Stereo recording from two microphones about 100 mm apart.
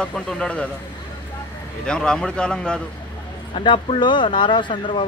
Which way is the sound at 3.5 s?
60° left (ahead or behind).